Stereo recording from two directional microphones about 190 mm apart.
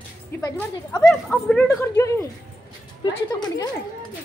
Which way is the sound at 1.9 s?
15° left (ahead or behind).